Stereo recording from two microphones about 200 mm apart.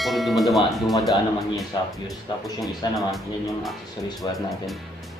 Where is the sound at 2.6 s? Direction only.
Centre (ahead or behind).